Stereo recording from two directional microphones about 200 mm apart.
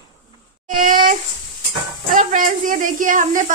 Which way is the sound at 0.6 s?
40° right (ahead or behind).